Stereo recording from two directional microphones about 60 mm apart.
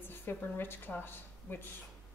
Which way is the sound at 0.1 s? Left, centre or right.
Left.